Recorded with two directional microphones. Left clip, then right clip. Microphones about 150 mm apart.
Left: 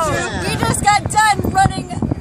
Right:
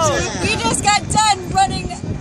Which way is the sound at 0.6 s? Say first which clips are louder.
Left 3 dB; 10° left (ahead or behind).